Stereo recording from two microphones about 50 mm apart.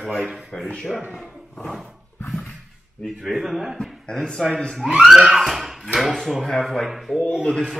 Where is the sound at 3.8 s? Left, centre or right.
Centre.